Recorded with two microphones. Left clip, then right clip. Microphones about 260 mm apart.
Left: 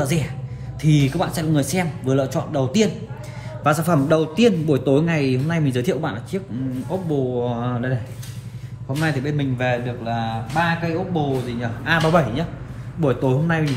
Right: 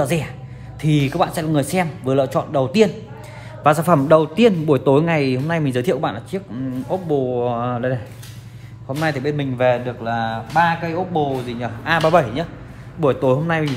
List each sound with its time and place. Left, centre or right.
0.0 s a man's voice: right
11.6 s a man's voice: right